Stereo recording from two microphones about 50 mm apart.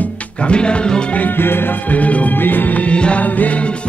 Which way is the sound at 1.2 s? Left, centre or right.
Left.